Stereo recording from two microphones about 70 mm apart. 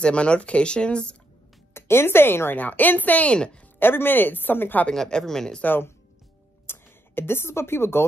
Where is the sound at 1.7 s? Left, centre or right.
Left.